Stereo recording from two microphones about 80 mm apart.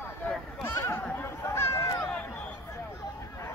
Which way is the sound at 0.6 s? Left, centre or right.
Left.